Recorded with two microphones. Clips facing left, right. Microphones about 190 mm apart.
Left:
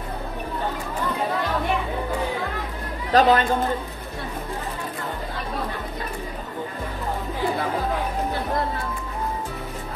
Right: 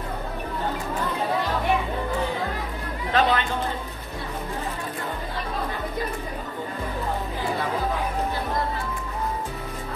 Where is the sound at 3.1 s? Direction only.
40° left (ahead or behind).